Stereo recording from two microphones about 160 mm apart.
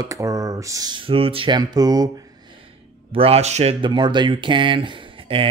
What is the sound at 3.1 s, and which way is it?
Speech, 35° right (ahead or behind).